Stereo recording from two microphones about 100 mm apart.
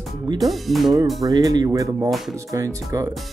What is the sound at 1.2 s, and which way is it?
Speech, 40° right (ahead or behind).